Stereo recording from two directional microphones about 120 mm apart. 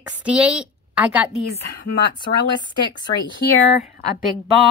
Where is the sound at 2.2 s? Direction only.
40° left (ahead or behind).